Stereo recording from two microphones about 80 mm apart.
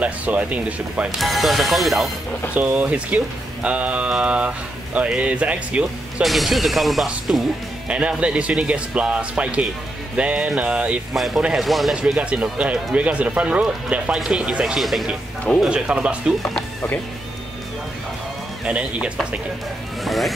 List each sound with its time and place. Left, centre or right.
0.0 s mantra: centre
1.1 s speech: centre
2.5 s mantra: centre
6.2 s speech: centre
7.3 s mantra: centre
11.1 s speech: centre
11.9 s mantra: centre
14.1 s speech: centre
15.7 s mantra: centre
18.7 s mantra: centre
20.1 s speech: centre